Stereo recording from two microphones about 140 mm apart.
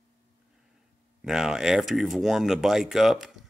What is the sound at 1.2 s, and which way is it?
A man's voice, 5° right (ahead or behind).